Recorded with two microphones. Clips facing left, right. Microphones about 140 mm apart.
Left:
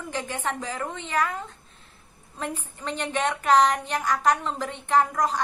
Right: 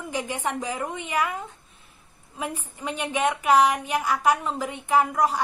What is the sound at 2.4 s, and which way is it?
A woman's voice, 10° right (ahead or behind).